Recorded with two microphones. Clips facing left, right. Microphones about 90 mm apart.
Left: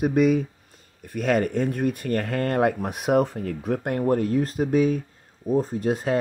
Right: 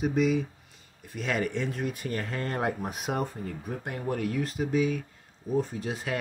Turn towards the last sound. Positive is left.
turn(degrees=45)  # may be behind; listen again after turning